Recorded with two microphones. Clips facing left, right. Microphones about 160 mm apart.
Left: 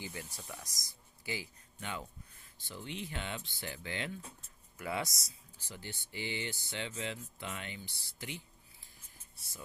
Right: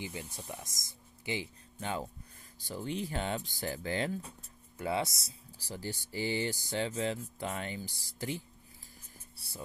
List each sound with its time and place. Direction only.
0.0 s speech: 20° right (ahead or behind)
1.8 s speech: 35° right (ahead or behind)
4.7 s speech: 30° right (ahead or behind)